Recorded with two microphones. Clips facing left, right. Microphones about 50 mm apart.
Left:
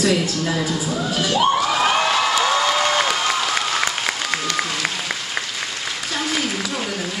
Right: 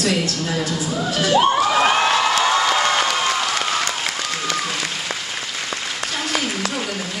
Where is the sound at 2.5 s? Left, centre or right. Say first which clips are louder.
Right 1 dB; centre.